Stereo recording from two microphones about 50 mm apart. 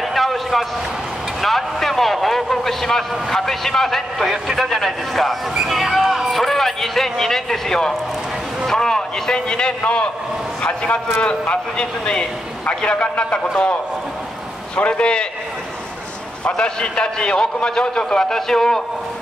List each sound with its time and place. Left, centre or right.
0.0 s a sound: centre
1.4 s a man's voice: centre
5.5 s speech: centre
5.8 s a sound: centre
6.3 s a man's voice: centre; by 13.4 s left
14.8 s a man's voice: left
16.4 s a man's voice: centre